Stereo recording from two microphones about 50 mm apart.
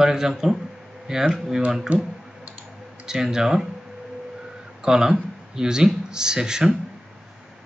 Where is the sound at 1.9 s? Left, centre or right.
Right.